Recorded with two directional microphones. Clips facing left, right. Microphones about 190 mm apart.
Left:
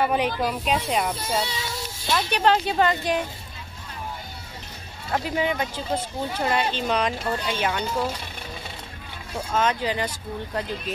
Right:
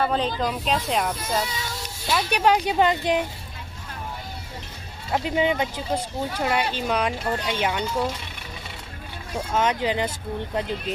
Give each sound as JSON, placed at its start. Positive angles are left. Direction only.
{"t": 0.0, "sound": "speech", "side_deg": 15}
{"t": 2.0, "sound": "speech", "side_deg": -5}
{"t": 5.1, "sound": "speech", "side_deg": -20}
{"t": 9.3, "sound": "speech", "side_deg": -15}